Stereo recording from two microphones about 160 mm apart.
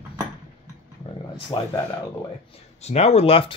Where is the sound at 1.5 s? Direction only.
30° left (ahead or behind).